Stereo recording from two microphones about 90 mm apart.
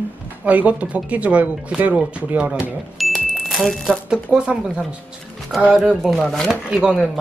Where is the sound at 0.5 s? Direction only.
15° right (ahead or behind).